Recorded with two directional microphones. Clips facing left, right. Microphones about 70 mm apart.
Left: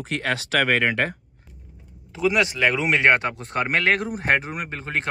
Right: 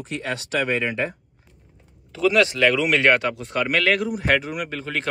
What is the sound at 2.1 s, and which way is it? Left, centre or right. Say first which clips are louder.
Speech: right 3 dB; centre.